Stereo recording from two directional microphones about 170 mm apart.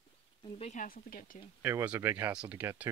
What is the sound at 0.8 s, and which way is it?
Speech, 55° left (ahead or behind).